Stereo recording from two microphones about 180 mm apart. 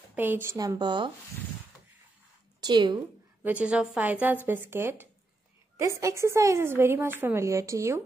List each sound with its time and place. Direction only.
0.1 s a woman's voice: 10° right (ahead or behind)
2.6 s a woman's voice: 25° right (ahead or behind)
3.4 s a woman's voice: 5° right (ahead or behind)